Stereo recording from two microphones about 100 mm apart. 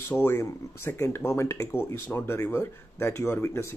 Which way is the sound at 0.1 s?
25° left (ahead or behind).